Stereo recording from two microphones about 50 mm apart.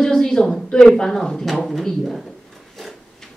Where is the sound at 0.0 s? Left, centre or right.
Centre.